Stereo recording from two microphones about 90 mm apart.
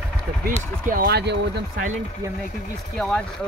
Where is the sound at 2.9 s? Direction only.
5° left (ahead or behind).